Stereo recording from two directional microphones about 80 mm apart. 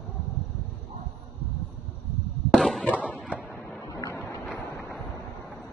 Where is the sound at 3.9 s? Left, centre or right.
Left.